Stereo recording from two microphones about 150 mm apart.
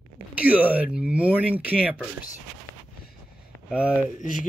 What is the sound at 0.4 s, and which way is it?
Speech, 10° right (ahead or behind).